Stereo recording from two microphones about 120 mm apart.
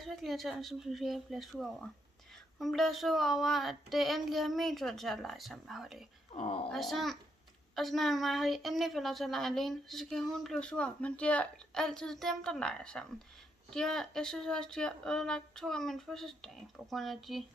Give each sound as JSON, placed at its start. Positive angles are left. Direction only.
{"t": 0.0, "sound": "a woman's voice", "side_deg": 0}
{"t": 6.3, "sound": "speech", "side_deg": 55}
{"t": 6.7, "sound": "a woman's voice", "side_deg": 0}